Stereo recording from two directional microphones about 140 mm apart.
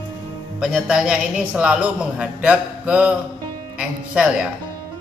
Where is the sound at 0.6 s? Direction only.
5° right (ahead or behind).